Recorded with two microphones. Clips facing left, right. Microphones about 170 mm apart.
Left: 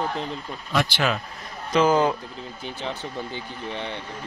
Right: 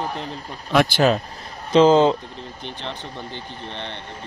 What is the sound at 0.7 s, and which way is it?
Speech, 45° right (ahead or behind).